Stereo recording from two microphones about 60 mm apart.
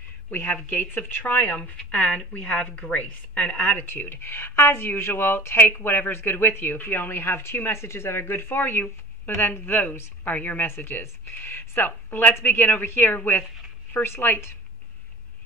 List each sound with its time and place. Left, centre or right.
0.3 s speech: left
2.0 s a woman's voice: centre; by 5.7 s left
5.7 s speech: left